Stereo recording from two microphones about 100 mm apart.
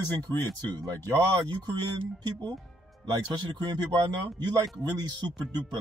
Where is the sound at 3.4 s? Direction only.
45° right (ahead or behind).